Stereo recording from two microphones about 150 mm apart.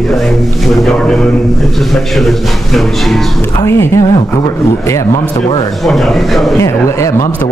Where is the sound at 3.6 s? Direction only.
20° left (ahead or behind).